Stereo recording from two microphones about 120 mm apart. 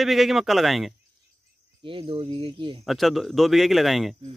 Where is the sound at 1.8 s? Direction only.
45° right (ahead or behind).